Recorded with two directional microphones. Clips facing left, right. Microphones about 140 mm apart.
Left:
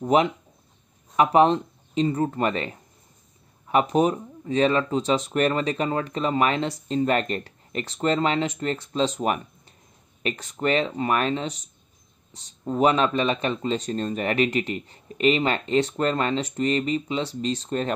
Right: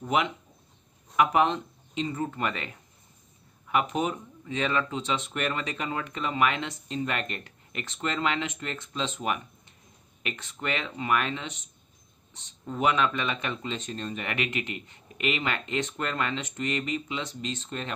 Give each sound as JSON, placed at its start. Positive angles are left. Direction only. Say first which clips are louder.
{"t": 0.0, "sound": "speech", "louder": "left 7 dB", "side_deg": 35}